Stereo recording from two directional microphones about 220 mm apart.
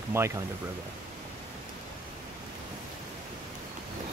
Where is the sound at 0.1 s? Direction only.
10° right (ahead or behind).